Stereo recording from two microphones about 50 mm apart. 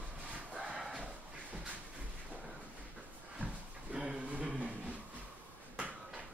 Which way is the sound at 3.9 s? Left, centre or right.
Centre.